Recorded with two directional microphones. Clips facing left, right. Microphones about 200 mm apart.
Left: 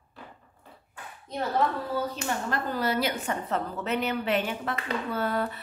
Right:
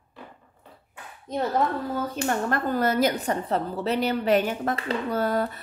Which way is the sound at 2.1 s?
50° right (ahead or behind).